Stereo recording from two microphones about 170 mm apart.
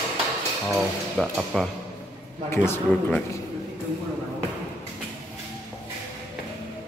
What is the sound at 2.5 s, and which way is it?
Speech, 15° left (ahead or behind).